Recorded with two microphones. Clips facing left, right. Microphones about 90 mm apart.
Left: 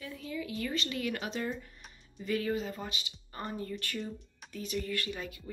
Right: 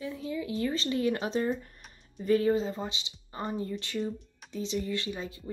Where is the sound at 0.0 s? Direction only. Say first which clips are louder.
Right 5 dB; 30° right (ahead or behind).